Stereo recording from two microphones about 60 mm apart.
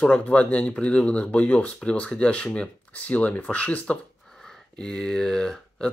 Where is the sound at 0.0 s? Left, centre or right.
Left.